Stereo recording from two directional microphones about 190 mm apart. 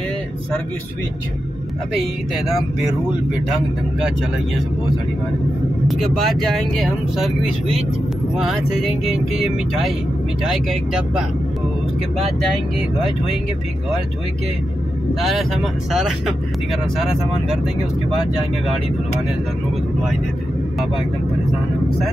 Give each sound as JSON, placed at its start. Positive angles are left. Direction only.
{"t": 5.9, "sound": "speech", "side_deg": 0}
{"t": 8.4, "sound": "speech", "side_deg": 0}
{"t": 10.4, "sound": "speech", "side_deg": 0}
{"t": 15.1, "sound": "speech", "side_deg": 0}